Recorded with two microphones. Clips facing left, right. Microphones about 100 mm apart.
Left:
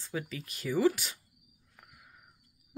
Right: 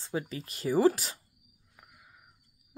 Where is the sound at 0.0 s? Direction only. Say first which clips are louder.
Right 3 dB; 30° right (ahead or behind).